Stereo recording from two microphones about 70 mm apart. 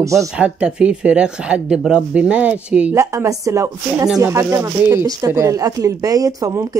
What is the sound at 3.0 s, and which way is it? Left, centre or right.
Speech, right.